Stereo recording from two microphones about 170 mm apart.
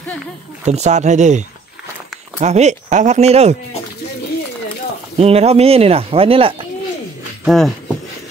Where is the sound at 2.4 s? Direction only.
40° right (ahead or behind).